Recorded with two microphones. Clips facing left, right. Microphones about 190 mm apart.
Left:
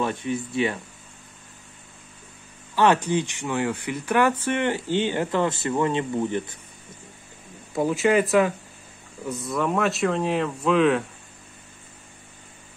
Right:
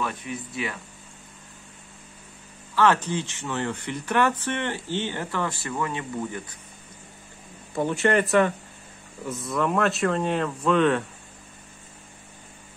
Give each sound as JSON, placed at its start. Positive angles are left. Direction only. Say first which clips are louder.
{"t": 0.0, "sound": "speech", "louder": "left 5 dB", "side_deg": 25}
{"t": 2.7, "sound": "speech", "louder": "left 2 dB", "side_deg": 15}
{"t": 7.7, "sound": "speech", "louder": "left 2 dB", "side_deg": 5}